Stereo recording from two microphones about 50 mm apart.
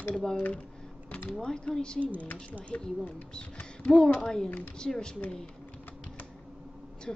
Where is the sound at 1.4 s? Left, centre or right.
Centre.